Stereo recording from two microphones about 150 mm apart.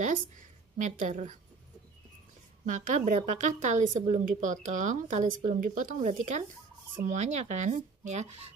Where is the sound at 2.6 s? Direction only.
55° right (ahead or behind).